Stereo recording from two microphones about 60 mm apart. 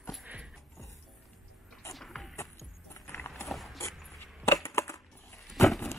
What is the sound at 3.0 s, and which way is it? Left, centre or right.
Vehicle, left.